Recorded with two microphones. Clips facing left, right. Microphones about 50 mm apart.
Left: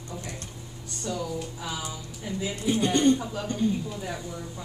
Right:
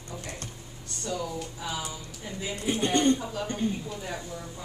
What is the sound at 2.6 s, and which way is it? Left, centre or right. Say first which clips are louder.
Speech: left 2 dB; right.